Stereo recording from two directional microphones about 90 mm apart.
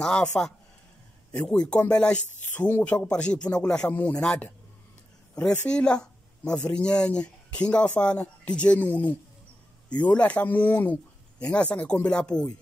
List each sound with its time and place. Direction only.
0.0 s speech: 10° left (ahead or behind)